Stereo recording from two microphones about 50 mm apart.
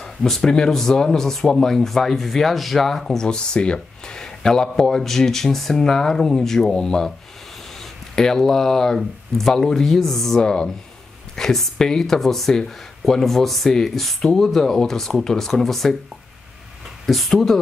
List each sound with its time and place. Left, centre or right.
0.0 s speech: centre
10.4 s speech: centre
17.0 s speech: centre